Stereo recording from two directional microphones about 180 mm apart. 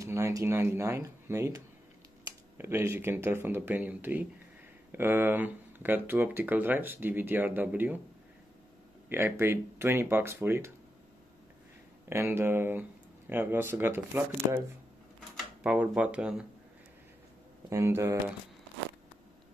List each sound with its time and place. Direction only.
0.0 s speech: 15° right (ahead or behind)
9.1 s speech: 15° right (ahead or behind)
12.1 s speech: 15° right (ahead or behind)
17.6 s speech: 15° right (ahead or behind)